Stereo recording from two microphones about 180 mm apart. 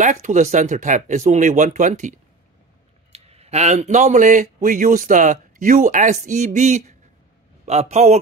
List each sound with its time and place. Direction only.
0.0 s a man's voice: 45° right (ahead or behind)